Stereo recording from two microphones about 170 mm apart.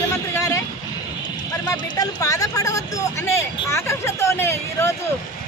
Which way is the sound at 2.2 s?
20° left (ahead or behind).